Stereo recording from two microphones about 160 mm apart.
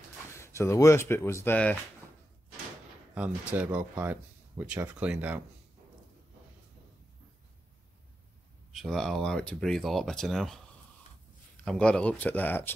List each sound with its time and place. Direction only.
0.3 s speech: 15° left (ahead or behind)
3.2 s speech: 10° right (ahead or behind)
8.7 s speech: centre (ahead or behind)
11.6 s speech: 5° left (ahead or behind)